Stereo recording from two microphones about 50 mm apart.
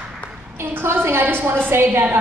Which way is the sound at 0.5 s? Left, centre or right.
Right.